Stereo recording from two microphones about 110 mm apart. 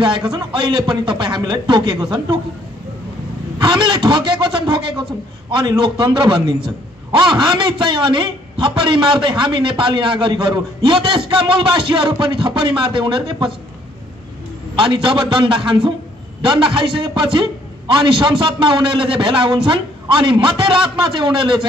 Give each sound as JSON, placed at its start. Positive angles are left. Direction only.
{"t": 0.0, "sound": "a man's voice", "side_deg": -45}
{"t": 3.5, "sound": "a man's voice", "side_deg": -45}
{"t": 14.8, "sound": "a man's voice", "side_deg": -50}